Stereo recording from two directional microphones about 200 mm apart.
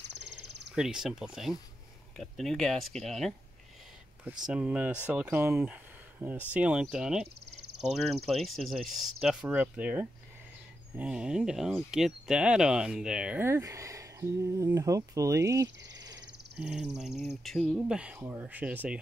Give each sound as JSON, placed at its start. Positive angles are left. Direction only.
{"t": 0.0, "sound": "cricket", "side_deg": -60}
{"t": 0.7, "sound": "speech", "side_deg": -5}
{"t": 4.5, "sound": "speech", "side_deg": -5}
{"t": 16.5, "sound": "speech", "side_deg": -5}